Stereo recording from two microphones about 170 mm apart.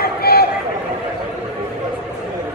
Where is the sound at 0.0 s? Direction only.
65° left (ahead or behind).